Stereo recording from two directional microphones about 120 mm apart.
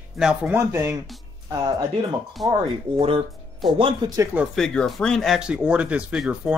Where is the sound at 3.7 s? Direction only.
45° right (ahead or behind).